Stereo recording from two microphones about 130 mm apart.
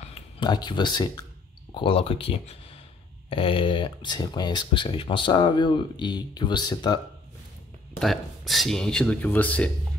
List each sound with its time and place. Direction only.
0.4 s speech: 35° left (ahead or behind)
1.7 s speech: 45° left (ahead or behind)
4.8 s speech: 45° left (ahead or behind)
8.0 s speech: centre (ahead or behind)